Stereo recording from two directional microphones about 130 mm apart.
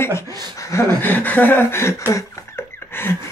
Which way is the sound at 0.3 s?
35° right (ahead or behind).